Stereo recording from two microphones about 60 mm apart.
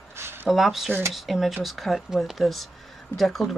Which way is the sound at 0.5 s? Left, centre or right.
Centre.